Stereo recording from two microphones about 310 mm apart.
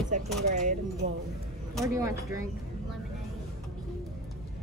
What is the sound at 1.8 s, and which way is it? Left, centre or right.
Speech, centre.